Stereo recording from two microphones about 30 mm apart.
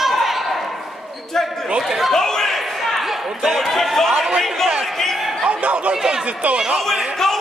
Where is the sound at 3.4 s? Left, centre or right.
Centre.